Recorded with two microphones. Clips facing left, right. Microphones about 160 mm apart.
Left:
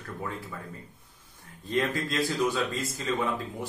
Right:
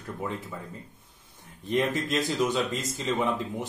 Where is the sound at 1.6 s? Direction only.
20° right (ahead or behind).